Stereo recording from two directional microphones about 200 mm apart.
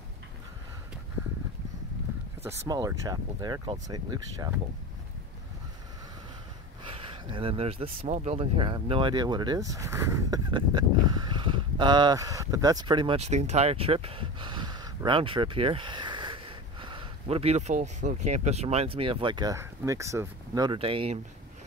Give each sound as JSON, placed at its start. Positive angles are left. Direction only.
{"t": 2.4, "sound": "speech", "side_deg": -15}
{"t": 6.8, "sound": "speech", "side_deg": -25}